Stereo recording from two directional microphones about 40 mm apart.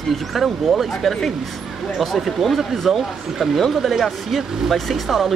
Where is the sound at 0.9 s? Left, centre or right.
Centre.